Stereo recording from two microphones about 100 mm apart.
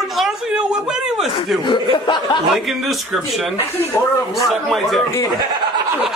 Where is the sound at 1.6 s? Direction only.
50° left (ahead or behind).